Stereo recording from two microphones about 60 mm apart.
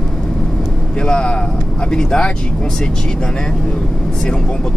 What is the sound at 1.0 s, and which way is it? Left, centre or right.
Speech, centre.